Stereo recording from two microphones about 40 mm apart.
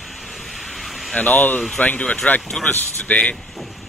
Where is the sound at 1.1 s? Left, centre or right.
Left.